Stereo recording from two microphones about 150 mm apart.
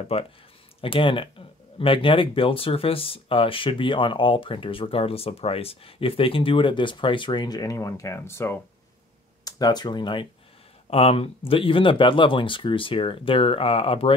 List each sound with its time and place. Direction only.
0.1 s speech: 40° left (ahead or behind); by 8.5 s 15° left (ahead or behind)
9.4 s speech: 25° left (ahead or behind)
10.9 s speech: 40° left (ahead or behind)